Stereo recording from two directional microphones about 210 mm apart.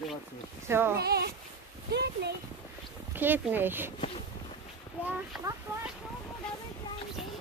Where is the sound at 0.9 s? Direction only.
50° right (ahead or behind).